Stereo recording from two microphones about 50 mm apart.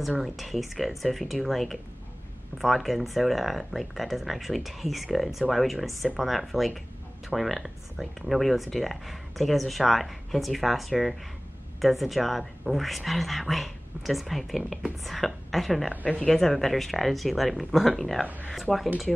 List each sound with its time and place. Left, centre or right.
0.2 s speech: centre
18.2 s speech: right
18.5 s speech: centre